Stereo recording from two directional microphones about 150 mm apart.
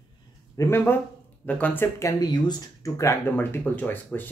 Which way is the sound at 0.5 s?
15° left (ahead or behind).